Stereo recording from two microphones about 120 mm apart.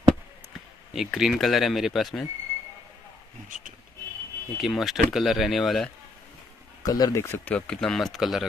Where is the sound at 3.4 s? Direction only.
90° right.